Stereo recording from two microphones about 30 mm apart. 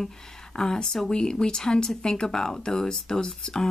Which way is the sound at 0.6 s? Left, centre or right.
Left.